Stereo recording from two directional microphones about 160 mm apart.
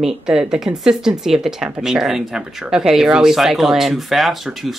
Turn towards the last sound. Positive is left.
turn(degrees=0)  # may be behind; listen again after turning